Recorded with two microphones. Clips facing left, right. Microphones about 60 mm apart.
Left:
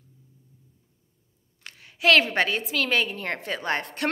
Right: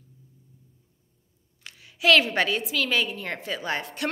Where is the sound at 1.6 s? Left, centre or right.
Left.